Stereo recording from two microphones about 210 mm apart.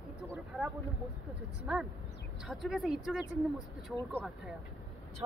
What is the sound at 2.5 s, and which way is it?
A woman's voice, centre (ahead or behind).